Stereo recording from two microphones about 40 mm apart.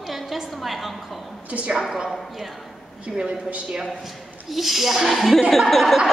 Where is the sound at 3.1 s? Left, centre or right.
Centre.